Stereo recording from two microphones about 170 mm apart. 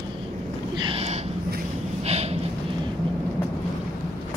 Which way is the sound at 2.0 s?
40° right (ahead or behind).